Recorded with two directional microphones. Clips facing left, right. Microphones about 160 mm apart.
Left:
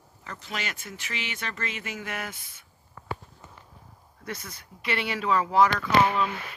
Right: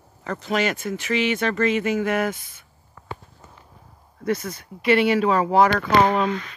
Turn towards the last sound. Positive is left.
turn(degrees=-50)  # may be behind; listen again after turning